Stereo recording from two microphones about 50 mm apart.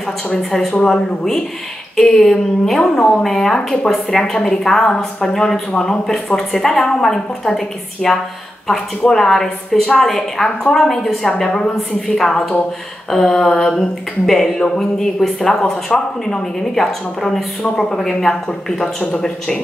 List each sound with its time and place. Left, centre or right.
0.4 s a woman's voice: centre
2.8 s a woman's voice: centre
3.2 s a woman's voice: centre